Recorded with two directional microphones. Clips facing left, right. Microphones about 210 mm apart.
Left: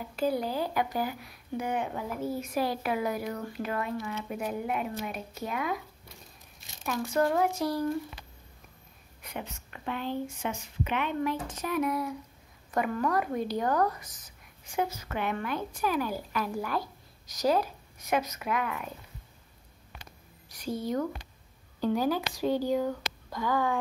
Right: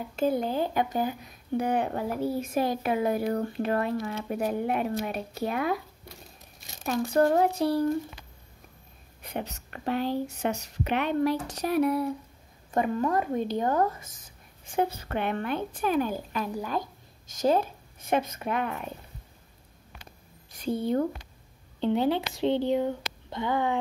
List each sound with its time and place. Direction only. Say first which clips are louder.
0.1 s speech: right 3 dB; 25° right (ahead or behind)
1.6 s a woman's voice: right 4 dB; 35° right (ahead or behind)
6.8 s a woman's voice: right 4 dB; 35° right (ahead or behind)
9.2 s a woman's voice: right 5 dB; 35° right (ahead or behind)
20.8 s speech: right 4 dB; 30° right (ahead or behind)